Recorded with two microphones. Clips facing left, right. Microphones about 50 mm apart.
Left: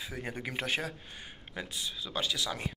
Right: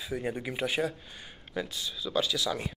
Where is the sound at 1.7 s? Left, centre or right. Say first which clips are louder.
Right 5 dB; left.